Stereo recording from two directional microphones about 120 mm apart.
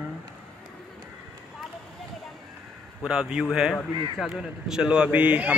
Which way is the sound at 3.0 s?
5° right (ahead or behind).